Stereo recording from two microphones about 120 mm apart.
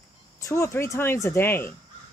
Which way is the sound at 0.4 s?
25° left (ahead or behind).